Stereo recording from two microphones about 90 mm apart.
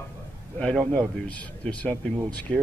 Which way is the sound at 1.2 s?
15° left (ahead or behind).